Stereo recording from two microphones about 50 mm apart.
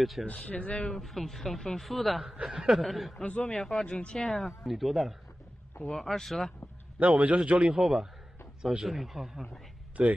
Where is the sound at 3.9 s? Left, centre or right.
Left.